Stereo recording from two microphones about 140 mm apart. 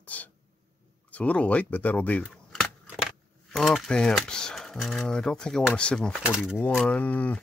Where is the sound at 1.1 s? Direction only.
10° left (ahead or behind).